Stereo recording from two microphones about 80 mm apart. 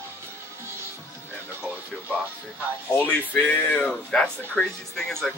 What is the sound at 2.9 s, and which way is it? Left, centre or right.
Speech, left.